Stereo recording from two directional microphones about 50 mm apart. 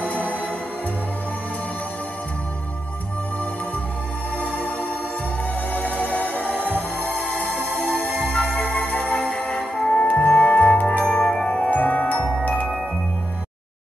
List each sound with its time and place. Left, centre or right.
4.6 s music: left
11.2 s music: centre